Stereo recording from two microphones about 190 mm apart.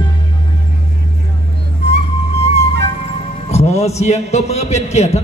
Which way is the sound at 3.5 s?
35° left (ahead or behind).